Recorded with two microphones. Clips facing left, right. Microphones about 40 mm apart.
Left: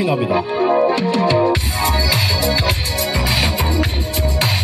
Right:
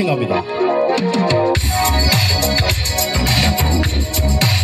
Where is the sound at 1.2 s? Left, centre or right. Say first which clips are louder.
Even; centre.